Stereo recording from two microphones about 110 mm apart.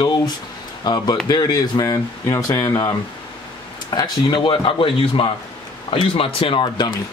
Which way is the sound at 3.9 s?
40° left (ahead or behind).